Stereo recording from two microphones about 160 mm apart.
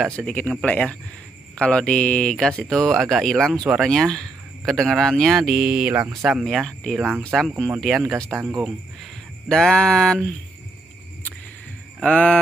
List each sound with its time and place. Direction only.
0.0 s speech: 5° left (ahead or behind)
6.4 s speech: 5° left (ahead or behind)
8.3 s speech: 20° right (ahead or behind)
9.5 s speech: 5° left (ahead or behind)
12.0 s speech: 5° left (ahead or behind)